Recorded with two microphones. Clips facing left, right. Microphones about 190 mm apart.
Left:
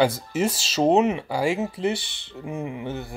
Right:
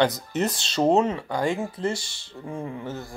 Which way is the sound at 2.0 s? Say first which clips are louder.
Left 2 dB; 60° left (ahead or behind).